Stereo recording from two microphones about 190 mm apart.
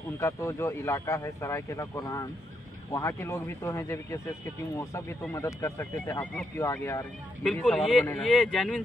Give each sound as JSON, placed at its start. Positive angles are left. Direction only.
{"t": 0.2, "sound": "speech", "side_deg": 15}
{"t": 5.3, "sound": "speech", "side_deg": 15}